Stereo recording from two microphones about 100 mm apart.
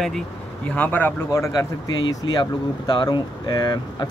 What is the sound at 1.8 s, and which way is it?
Speech, 40° left (ahead or behind).